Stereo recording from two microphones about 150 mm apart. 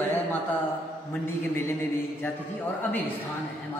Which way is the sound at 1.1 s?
15° left (ahead or behind).